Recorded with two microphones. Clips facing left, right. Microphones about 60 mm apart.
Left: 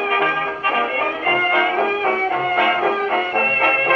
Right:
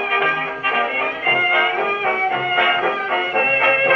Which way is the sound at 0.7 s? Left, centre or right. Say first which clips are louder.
Right 1 dB; right.